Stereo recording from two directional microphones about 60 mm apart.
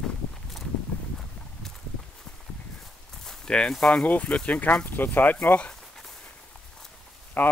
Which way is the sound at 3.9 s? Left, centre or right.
Left.